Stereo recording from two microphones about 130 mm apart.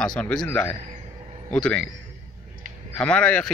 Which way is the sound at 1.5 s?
5° left (ahead or behind).